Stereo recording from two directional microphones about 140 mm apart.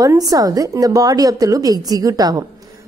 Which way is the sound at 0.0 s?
25° right (ahead or behind).